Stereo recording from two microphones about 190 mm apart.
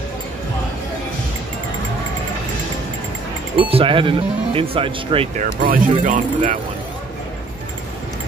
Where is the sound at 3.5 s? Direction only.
30° right (ahead or behind).